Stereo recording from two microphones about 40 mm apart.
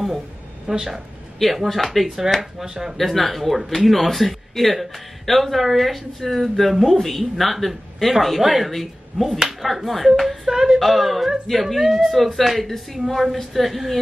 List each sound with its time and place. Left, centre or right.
0.7 s speech: centre
1.4 s speech: centre
2.6 s speech: centre
3.0 s speech: centre
10.8 s speech: centre